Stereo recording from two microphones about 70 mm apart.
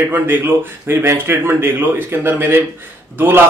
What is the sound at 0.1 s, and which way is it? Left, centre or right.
Speech, right.